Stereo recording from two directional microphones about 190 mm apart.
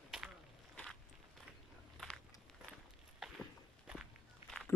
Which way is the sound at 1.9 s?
Centre (ahead or behind).